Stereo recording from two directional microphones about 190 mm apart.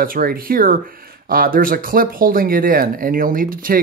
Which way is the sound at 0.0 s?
50° right (ahead or behind).